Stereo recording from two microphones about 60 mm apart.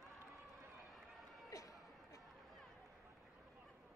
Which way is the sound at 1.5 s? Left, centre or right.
Left.